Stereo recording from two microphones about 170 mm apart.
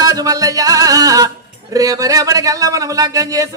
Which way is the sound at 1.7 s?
20° right (ahead or behind).